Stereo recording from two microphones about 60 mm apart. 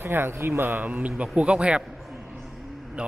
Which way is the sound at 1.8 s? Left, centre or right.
Centre.